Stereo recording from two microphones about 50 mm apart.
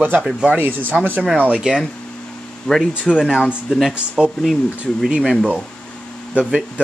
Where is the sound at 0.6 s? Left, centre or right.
Right.